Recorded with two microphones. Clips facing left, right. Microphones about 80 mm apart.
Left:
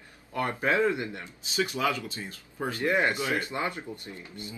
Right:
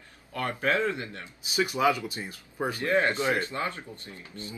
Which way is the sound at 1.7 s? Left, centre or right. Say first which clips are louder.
Right 4 dB; centre.